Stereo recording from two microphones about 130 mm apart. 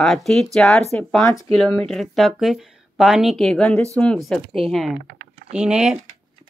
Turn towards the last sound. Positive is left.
turn(degrees=-5)  # may be behind; listen again after turning